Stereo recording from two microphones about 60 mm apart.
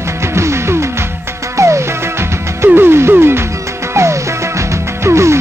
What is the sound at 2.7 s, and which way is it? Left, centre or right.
Music, right.